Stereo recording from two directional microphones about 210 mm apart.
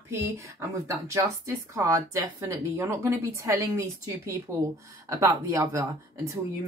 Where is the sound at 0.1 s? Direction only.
15° right (ahead or behind).